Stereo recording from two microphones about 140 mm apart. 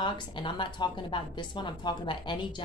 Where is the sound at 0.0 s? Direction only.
35° left (ahead or behind).